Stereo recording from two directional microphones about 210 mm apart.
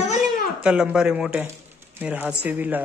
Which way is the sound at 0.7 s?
5° right (ahead or behind).